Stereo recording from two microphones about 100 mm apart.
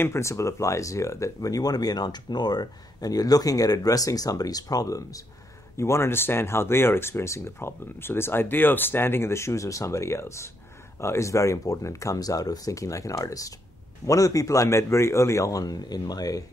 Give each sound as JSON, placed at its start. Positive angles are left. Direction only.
{"t": 0.0, "sound": "speech", "side_deg": 30}